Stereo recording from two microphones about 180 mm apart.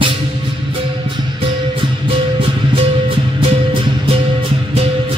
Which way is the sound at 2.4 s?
30° right (ahead or behind).